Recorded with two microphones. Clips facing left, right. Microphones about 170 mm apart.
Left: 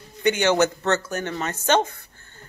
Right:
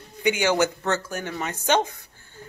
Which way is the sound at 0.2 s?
10° right (ahead or behind).